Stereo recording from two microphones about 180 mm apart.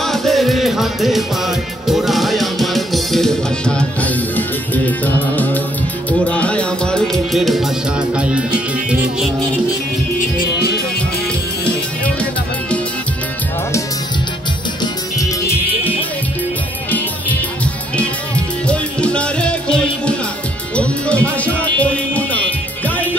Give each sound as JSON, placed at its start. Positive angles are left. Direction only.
{"t": 0.0, "sound": "music", "side_deg": 0}
{"t": 14.8, "sound": "music", "side_deg": 15}
{"t": 18.7, "sound": "music", "side_deg": 5}
{"t": 21.6, "sound": "music", "side_deg": 10}